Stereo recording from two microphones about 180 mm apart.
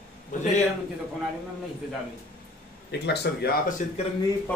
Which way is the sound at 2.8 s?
70° left (ahead or behind).